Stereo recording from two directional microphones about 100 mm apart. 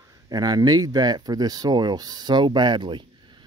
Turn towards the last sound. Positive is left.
turn(degrees=-50)  # may be behind; listen again after turning